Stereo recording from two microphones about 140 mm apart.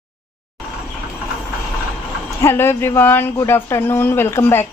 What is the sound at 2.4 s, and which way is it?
Speech, 15° left (ahead or behind).